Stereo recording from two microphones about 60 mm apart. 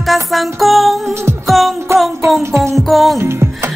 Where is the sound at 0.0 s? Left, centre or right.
Centre.